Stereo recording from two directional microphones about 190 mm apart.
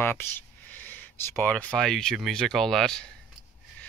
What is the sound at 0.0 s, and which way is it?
Speech, 10° left (ahead or behind).